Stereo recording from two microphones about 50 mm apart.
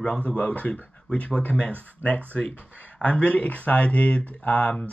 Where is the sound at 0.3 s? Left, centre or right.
Left.